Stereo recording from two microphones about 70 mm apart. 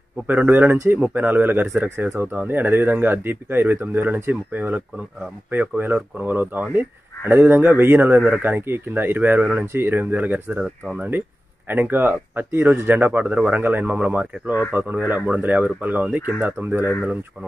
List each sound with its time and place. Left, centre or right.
0.3 s speech: right